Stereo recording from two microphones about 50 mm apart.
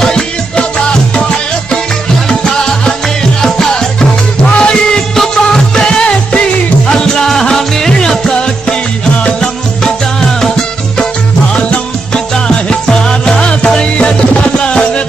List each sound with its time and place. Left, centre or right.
0.0 s music: centre
2.2 s music: centre
5.9 s music: centre
11.5 s music: centre